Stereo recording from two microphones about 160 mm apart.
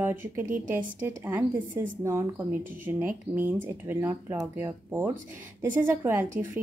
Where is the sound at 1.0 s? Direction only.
15° right (ahead or behind).